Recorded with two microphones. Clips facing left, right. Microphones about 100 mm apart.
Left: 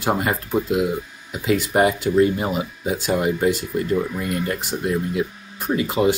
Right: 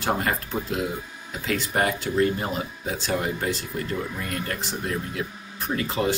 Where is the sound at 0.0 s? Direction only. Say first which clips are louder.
Left 4 dB; 15° left (ahead or behind).